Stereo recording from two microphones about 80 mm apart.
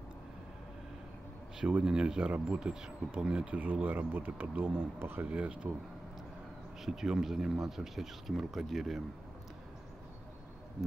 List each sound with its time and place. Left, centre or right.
1.6 s speech: centre; by 5.2 s right
5.3 s speech: centre
6.8 s speech: centre